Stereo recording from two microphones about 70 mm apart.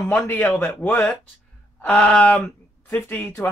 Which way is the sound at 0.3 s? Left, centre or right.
Left.